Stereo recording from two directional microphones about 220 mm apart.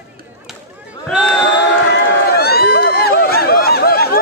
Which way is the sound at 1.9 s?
45° left (ahead or behind).